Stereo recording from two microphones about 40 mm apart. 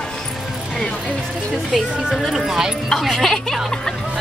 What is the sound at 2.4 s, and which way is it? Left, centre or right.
Speech, centre.